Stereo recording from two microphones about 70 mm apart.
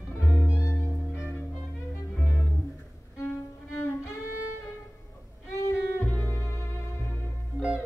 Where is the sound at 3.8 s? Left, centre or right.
Left.